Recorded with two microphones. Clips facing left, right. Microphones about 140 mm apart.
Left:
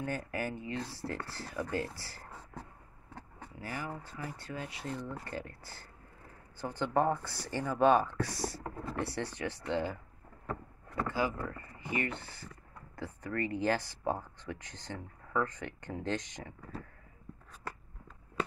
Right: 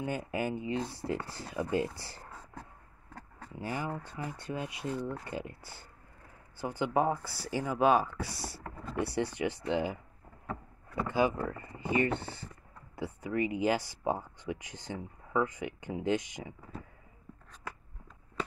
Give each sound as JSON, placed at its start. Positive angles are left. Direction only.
{"t": 0.0, "sound": "speech", "side_deg": -15}
{"t": 3.5, "sound": "speech", "side_deg": -25}
{"t": 11.0, "sound": "speech", "side_deg": -20}
{"t": 12.9, "sound": "speech", "side_deg": -10}
{"t": 17.5, "sound": "a sound", "side_deg": 5}